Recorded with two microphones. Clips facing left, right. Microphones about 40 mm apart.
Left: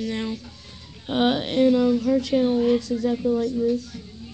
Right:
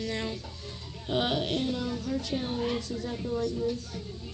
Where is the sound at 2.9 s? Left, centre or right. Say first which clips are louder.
Left 9 dB; left.